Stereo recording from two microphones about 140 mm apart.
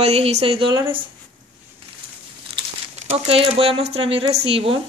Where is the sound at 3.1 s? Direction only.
45° right (ahead or behind).